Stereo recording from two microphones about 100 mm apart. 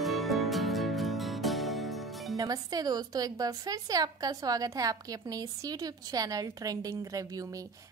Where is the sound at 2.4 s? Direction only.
40° right (ahead or behind).